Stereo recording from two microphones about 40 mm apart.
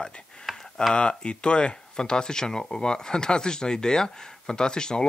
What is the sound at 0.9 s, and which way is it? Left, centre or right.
Speech, left.